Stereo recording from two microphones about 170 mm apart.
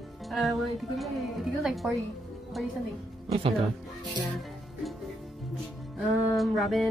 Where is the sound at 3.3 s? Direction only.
35° right (ahead or behind).